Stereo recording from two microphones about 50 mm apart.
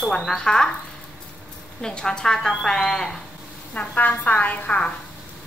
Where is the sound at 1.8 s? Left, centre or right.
Centre.